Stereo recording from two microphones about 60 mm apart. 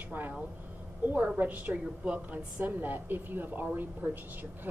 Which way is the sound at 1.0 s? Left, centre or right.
Right.